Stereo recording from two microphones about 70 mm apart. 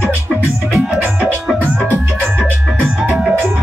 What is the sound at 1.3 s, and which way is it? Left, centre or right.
Music, left.